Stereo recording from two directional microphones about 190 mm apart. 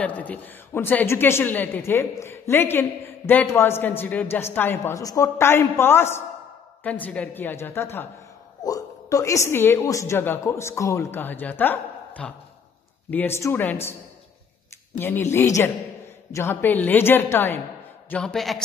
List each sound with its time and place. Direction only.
0.0 s a woman's voice: 10° left (ahead or behind)
15.0 s a woman's voice: 10° left (ahead or behind)